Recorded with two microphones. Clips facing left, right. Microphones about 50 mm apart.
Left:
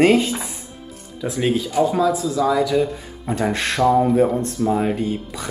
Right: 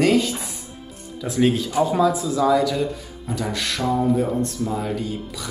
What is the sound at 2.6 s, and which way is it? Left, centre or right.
Speech, centre.